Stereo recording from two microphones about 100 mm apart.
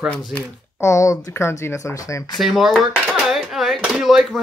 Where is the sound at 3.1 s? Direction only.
5° right (ahead or behind).